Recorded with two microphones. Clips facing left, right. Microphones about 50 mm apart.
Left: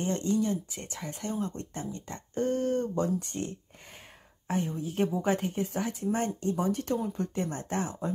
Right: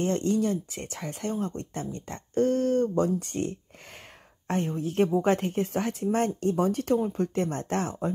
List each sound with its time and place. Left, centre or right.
0.0 s speech: right
4.9 s speech: right